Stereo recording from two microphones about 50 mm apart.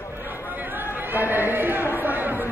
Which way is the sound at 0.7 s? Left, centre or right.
Right.